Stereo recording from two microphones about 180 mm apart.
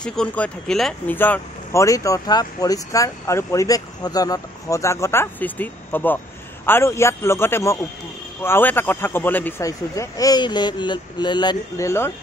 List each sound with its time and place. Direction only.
0.0 s speech: 5° left (ahead or behind)